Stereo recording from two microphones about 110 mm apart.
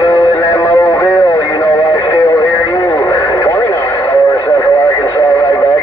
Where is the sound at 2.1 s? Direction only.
30° left (ahead or behind).